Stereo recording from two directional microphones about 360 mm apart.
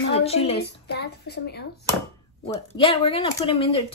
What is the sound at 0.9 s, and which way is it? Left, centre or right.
Speech, left.